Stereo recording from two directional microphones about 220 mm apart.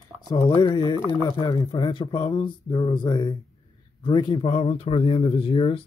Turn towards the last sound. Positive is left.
turn(degrees=25)  # may be behind; listen again after turning